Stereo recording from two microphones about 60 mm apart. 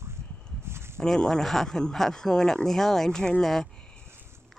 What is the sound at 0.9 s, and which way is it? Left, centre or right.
Speech, centre.